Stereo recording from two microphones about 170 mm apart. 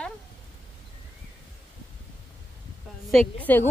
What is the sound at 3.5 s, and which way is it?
Speech, 10° left (ahead or behind).